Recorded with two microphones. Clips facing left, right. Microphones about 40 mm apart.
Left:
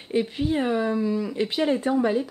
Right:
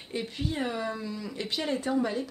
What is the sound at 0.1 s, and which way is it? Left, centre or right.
Speech, left.